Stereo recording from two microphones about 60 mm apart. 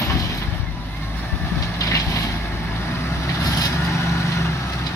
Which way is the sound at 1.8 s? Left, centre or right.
Left.